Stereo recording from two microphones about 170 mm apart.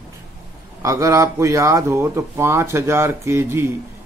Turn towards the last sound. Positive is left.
turn(degrees=-15)  # may be behind; listen again after turning